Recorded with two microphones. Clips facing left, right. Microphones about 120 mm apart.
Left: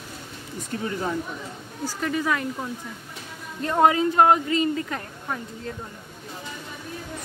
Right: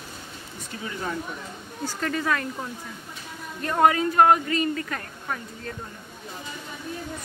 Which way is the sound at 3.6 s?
20° left (ahead or behind).